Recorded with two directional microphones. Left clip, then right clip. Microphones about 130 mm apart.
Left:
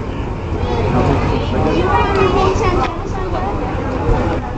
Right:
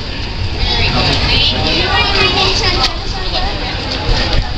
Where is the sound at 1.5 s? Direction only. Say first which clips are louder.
Right 1 dB; 30° right (ahead or behind).